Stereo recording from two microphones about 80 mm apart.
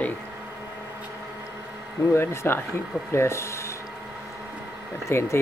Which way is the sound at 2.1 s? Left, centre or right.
Left.